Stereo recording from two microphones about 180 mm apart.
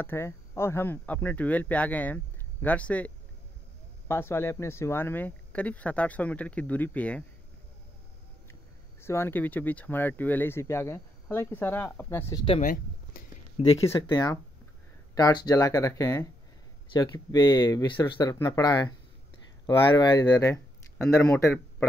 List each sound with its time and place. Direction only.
0.0 s speech: 15° left (ahead or behind)
4.1 s speech: 15° left (ahead or behind)
9.0 s speech: 15° left (ahead or behind)
13.6 s speech: 35° left (ahead or behind)
13.8 s speech: 20° left (ahead or behind)